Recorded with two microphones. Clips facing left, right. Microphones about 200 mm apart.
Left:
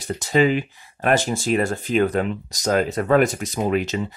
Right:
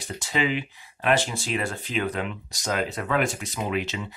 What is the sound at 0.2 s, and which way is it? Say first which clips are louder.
Speech: left 8 dB; 45° left (ahead or behind).